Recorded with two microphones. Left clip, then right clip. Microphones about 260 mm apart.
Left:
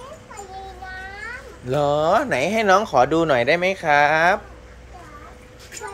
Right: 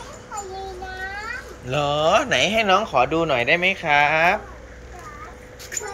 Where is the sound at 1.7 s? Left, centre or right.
Left.